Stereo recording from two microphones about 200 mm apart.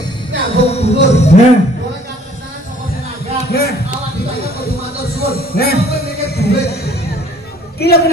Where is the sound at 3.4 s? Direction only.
50° left (ahead or behind).